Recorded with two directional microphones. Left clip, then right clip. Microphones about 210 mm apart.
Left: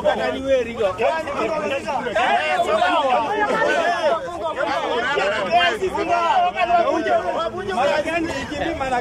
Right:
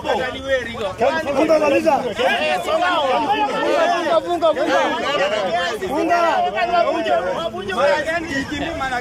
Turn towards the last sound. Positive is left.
turn(degrees=0)  # may be behind; listen again after turning